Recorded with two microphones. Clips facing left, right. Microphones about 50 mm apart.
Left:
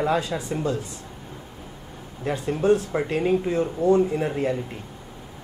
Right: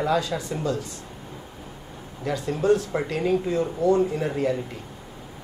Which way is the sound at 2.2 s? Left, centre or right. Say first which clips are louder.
Left 1 dB; left.